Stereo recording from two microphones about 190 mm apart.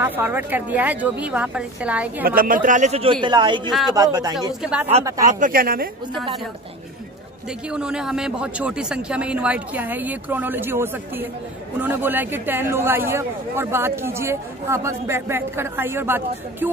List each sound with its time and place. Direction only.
0.0 s speech: 10° right (ahead or behind)
2.2 s a man's voice: 50° right (ahead or behind); by 4.6 s 20° right (ahead or behind)
5.2 s speech: 45° right (ahead or behind)
7.7 s speech: 5° right (ahead or behind)